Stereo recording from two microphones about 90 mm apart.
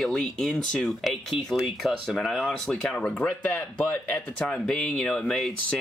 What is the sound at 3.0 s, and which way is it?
Speech, 15° left (ahead or behind).